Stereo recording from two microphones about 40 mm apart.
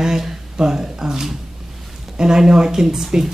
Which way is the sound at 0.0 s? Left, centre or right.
Centre.